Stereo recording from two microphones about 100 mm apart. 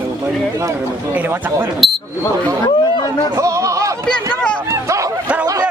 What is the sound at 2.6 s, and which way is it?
Chatter, 45° left (ahead or behind).